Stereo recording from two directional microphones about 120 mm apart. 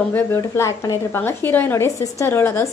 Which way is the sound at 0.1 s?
20° left (ahead or behind).